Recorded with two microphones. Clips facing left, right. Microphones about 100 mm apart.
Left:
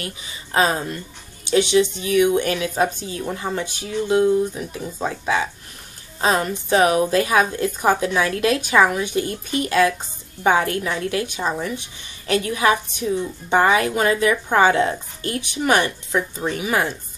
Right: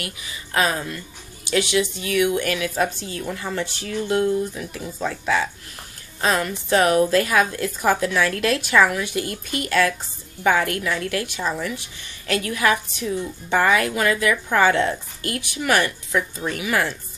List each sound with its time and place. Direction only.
0.0 s a woman's voice: 30° left (ahead or behind)